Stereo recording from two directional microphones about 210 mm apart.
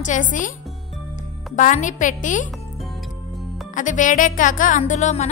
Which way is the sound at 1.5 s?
35° left (ahead or behind).